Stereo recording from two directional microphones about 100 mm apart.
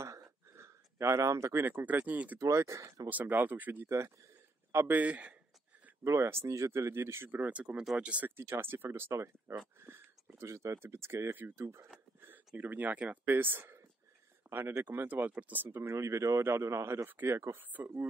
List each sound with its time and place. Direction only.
0.0 s a sound: 30° right (ahead or behind)
2.4 s speech: 30° right (ahead or behind)
3.1 s speech: 15° right (ahead or behind)
6.0 s speech: 25° right (ahead or behind)
7.8 s speech: centre (ahead or behind)
8.1 s speech: 20° right (ahead or behind)
14.5 s a sound: 15° right (ahead or behind)
14.8 s speech: 20° right (ahead or behind)